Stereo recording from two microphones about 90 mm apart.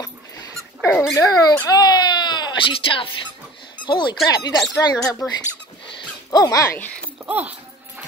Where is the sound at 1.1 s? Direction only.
45° left (ahead or behind); by 3.1 s 75° left (ahead or behind).